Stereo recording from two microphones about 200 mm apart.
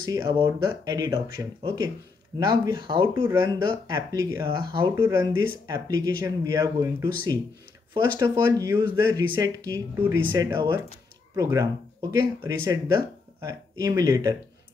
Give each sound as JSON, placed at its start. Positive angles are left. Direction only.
{"t": 0.1, "sound": "speech", "side_deg": -20}